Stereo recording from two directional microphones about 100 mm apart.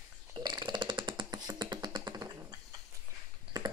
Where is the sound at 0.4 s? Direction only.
45° right (ahead or behind).